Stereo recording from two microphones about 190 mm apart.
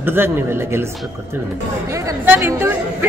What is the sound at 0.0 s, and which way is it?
Speech, 10° right (ahead or behind).